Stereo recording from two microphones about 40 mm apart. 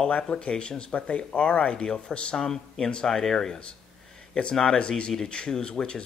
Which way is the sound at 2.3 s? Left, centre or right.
Centre.